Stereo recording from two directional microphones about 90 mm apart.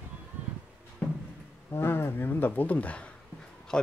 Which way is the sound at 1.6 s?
25° left (ahead or behind).